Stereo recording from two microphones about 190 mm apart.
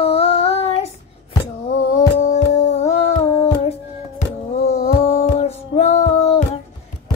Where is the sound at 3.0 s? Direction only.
30° left (ahead or behind).